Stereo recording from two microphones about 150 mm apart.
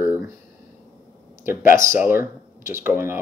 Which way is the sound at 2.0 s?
15° right (ahead or behind).